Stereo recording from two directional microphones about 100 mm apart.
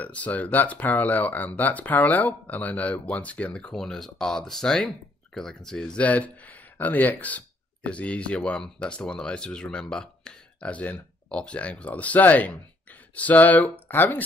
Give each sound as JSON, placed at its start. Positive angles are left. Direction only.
{"t": 0.0, "sound": "speech", "side_deg": 15}